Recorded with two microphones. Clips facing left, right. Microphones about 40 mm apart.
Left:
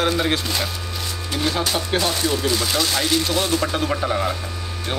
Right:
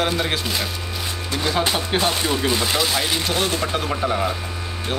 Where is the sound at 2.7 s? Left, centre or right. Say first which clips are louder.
Left 1 dB; centre.